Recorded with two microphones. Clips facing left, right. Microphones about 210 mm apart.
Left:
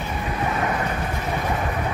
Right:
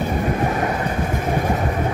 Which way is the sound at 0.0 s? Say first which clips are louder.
Right 6 dB; 45° right (ahead or behind).